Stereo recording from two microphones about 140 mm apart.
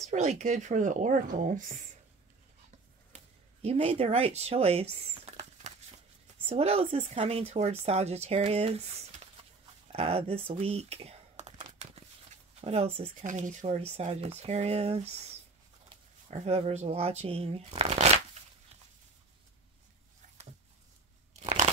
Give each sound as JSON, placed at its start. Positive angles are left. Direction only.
{"t": 0.0, "sound": "speech", "side_deg": -55}
{"t": 3.6, "sound": "speech", "side_deg": -45}
{"t": 10.6, "sound": "crumpling", "side_deg": -45}
{"t": 12.5, "sound": "speech", "side_deg": -50}
{"t": 13.2, "sound": "speech", "side_deg": -65}
{"t": 21.3, "sound": "crunch", "side_deg": -50}